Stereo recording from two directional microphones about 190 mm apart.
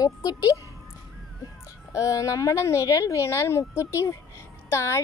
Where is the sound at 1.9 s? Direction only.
15° left (ahead or behind).